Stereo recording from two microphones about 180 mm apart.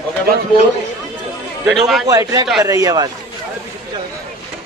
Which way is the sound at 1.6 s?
Centre (ahead or behind).